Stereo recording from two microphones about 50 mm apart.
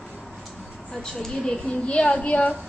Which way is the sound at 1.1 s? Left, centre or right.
Centre.